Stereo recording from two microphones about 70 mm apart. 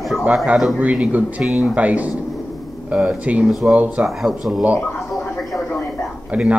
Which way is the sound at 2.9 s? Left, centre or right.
Centre.